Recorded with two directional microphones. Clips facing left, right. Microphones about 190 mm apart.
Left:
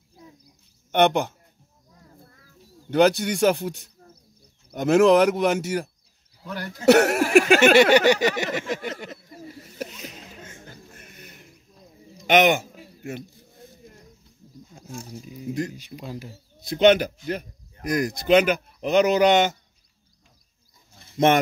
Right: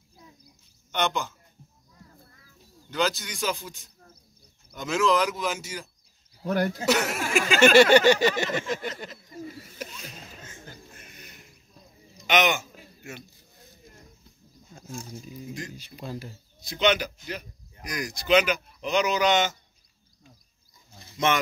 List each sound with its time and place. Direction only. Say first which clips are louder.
0.9 s speech: left 9 dB; 65° left (ahead or behind)
2.9 s speech: left 9 dB; 60° left (ahead or behind)
6.4 s speech: right 8 dB; 50° right (ahead or behind)
6.9 s speech: left 14 dB; 65° left (ahead or behind)
7.7 s a sound: left 1 dB; 20° left (ahead or behind)
11.0 s a sound: left 3 dB; 50° left (ahead or behind)
12.3 s speech: left 6 dB; 55° left (ahead or behind)
15.7 s speech: left 1 dB; 15° left (ahead or behind)
16.5 s speech: left 7 dB; 55° left (ahead or behind)